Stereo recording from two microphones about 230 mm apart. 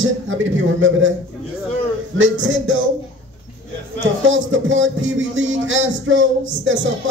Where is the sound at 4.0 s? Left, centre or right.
Right.